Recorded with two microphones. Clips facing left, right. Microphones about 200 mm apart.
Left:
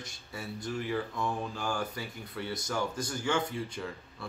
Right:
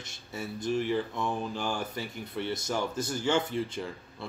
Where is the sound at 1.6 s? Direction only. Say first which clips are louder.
Right 1 dB; 25° right (ahead or behind).